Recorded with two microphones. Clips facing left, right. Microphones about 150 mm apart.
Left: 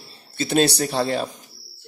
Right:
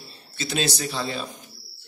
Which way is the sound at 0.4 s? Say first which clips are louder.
Left 7 dB; 55° left (ahead or behind).